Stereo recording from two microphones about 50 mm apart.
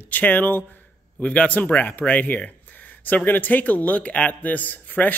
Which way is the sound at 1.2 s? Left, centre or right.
Left.